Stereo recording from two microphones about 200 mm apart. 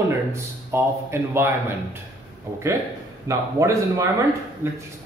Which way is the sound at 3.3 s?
15° right (ahead or behind).